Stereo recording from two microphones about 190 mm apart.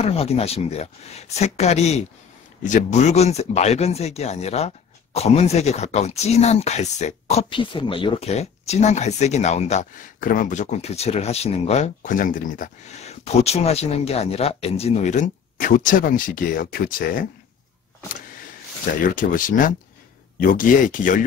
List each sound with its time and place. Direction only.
0.0 s speech: 30° left (ahead or behind); by 17.3 s 50° left (ahead or behind)
19.0 s speech: 45° left (ahead or behind)